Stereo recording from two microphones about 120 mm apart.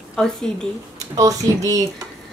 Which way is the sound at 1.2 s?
30° right (ahead or behind).